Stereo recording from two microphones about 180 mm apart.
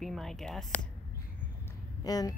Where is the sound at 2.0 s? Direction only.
20° left (ahead or behind).